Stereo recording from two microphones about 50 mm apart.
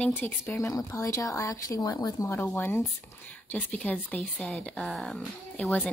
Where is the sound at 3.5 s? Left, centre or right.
Left.